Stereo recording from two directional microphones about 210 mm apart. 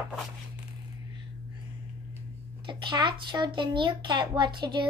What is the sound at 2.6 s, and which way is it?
A child's voice, 20° right (ahead or behind).